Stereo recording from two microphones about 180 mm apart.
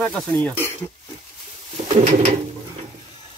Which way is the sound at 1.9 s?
40° right (ahead or behind).